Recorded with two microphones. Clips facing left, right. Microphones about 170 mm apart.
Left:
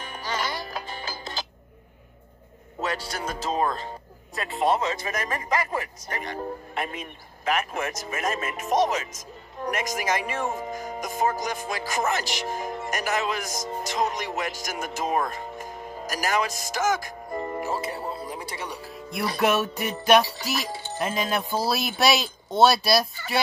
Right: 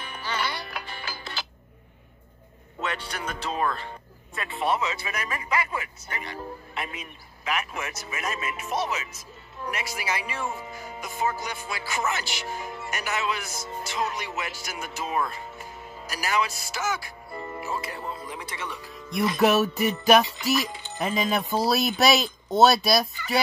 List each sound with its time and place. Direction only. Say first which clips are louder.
0.0 s music: left 1 dB; 40° left (ahead or behind)
2.8 s speech: left 2 dB; 40° left (ahead or behind)
19.4 s speech: right 2 dB; centre (ahead or behind)